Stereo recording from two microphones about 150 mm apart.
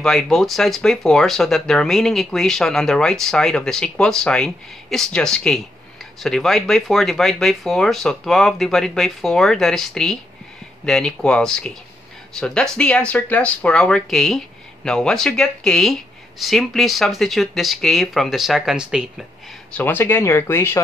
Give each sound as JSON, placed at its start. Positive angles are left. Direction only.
{"t": 0.0, "sound": "speech", "side_deg": 0}
{"t": 19.7, "sound": "speech", "side_deg": 15}